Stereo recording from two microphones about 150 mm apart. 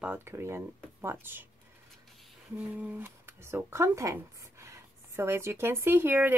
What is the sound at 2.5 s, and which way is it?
Speech, 10° right (ahead or behind).